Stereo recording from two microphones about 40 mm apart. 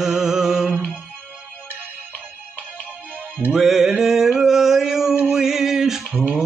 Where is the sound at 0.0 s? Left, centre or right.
Centre.